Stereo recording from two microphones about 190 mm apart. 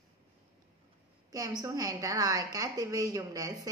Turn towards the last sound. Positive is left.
turn(degrees=-20)  # may be behind; listen again after turning